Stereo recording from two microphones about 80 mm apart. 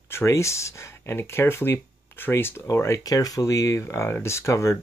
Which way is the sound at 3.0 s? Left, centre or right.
Left.